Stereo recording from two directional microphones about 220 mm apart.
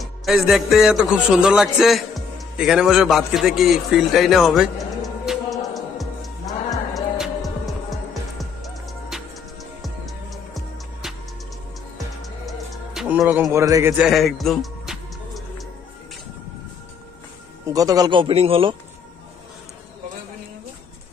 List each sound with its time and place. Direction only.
0.0 s music: centre (ahead or behind)
12.2 s music: centre (ahead or behind)
13.5 s a man's voice: 15° right (ahead or behind)
14.0 s music: centre (ahead or behind)
17.6 s a man's voice: 15° right (ahead or behind)